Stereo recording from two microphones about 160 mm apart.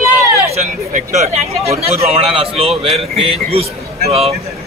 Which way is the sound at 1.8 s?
40° right (ahead or behind).